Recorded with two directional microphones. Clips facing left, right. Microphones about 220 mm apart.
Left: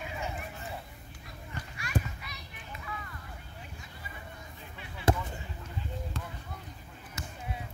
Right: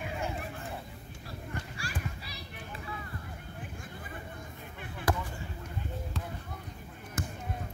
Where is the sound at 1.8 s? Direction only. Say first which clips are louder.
Left 10 dB; 30° right (ahead or behind).